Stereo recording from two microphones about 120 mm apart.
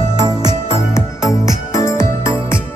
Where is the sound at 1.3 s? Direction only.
25° left (ahead or behind).